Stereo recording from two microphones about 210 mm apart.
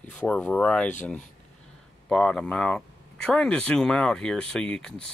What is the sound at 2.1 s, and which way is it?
Speech, 5° left (ahead or behind).